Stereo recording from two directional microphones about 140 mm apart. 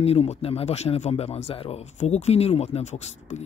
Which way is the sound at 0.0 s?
45° left (ahead or behind).